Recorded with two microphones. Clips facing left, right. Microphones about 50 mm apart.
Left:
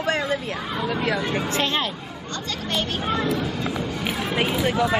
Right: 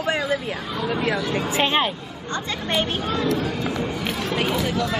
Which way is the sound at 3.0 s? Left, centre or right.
Centre.